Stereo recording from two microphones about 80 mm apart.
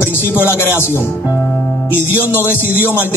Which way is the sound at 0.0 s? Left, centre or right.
Left.